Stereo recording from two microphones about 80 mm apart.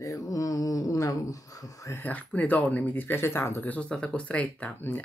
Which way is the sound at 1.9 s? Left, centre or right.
Centre.